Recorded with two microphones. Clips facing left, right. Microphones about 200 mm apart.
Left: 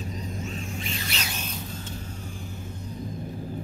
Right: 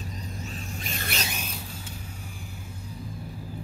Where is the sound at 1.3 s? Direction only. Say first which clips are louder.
Left 2 dB; 10° right (ahead or behind).